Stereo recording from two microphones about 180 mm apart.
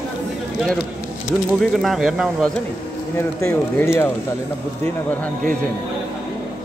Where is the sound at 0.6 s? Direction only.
Centre (ahead or behind).